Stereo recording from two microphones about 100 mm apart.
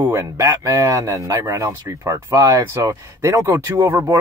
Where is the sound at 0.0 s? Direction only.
25° right (ahead or behind).